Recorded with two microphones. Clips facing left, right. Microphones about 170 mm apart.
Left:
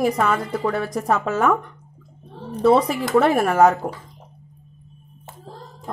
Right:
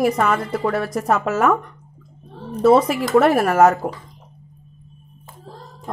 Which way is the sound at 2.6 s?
5° right (ahead or behind).